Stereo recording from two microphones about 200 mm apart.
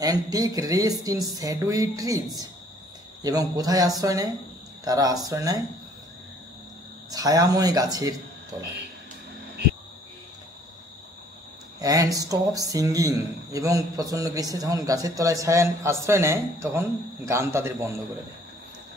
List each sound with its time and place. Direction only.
0.0 s a man's voice: 20° right (ahead or behind)
7.1 s speech: 20° right (ahead or behind)
11.8 s a man's voice: 15° right (ahead or behind)